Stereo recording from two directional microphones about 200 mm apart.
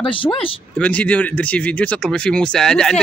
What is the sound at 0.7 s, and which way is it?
Speech, 5° left (ahead or behind).